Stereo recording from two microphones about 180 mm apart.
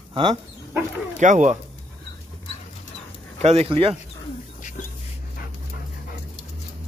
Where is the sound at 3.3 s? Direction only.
35° right (ahead or behind).